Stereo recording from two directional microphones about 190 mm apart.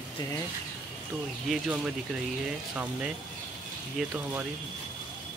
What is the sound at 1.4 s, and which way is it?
Speech, 5° right (ahead or behind).